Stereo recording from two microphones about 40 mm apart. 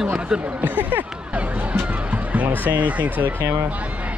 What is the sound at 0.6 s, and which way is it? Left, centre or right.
Speech, right.